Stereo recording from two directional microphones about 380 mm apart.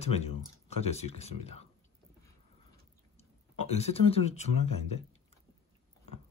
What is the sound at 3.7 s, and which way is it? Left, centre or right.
Speech, centre.